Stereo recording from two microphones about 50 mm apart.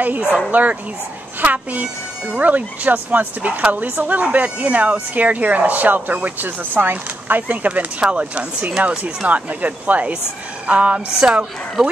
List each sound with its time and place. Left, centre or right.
0.5 s speech: right
2.2 s speech: right
2.5 s speech: right